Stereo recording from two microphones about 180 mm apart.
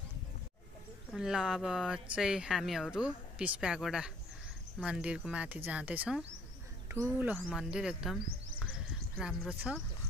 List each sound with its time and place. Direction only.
1.1 s speech: 5° right (ahead or behind)